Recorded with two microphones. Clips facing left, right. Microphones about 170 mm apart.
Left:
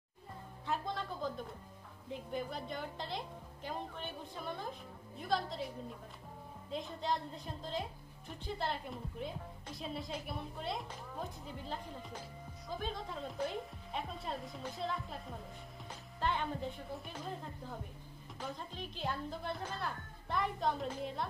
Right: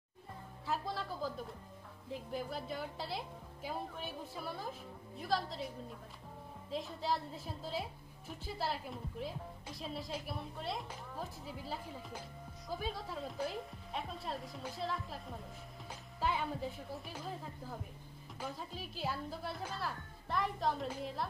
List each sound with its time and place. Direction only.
0.7 s a woman's voice: 5° right (ahead or behind)